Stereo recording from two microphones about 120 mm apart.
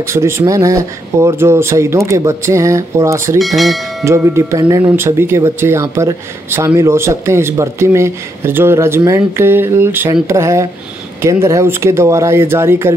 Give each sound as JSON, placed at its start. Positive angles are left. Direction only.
{"t": 0.0, "sound": "speech", "side_deg": -25}
{"t": 3.3, "sound": "speech", "side_deg": 0}
{"t": 4.0, "sound": "speech", "side_deg": -20}